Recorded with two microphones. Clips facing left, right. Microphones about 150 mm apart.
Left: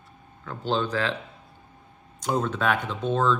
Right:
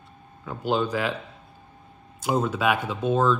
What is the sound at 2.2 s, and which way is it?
Speech, 10° right (ahead or behind).